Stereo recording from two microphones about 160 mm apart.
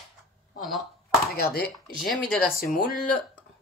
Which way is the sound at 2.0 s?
5° left (ahead or behind).